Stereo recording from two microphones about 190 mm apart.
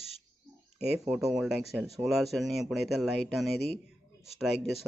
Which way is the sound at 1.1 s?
5° right (ahead or behind).